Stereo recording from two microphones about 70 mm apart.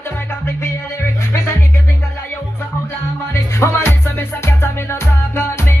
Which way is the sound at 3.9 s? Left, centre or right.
Left.